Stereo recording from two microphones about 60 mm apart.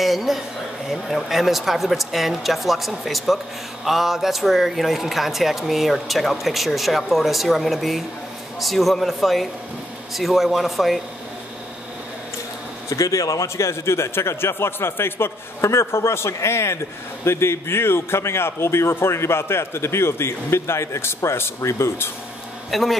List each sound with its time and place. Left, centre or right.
0.0 s a man's voice: centre
12.9 s a man's voice: left
22.7 s a man's voice: centre